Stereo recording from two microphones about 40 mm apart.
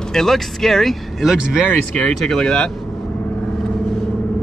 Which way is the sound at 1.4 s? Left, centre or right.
Centre.